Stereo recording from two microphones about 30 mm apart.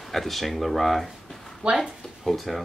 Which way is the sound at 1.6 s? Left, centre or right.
Right.